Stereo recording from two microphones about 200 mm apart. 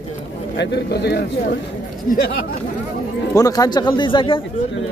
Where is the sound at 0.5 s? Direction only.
55° left (ahead or behind).